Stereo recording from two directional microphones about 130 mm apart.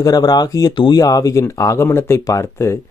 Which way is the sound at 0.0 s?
30° left (ahead or behind).